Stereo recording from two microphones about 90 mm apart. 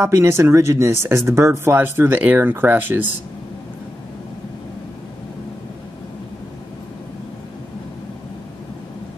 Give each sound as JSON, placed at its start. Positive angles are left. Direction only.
{"t": 0.0, "sound": "speech", "side_deg": -25}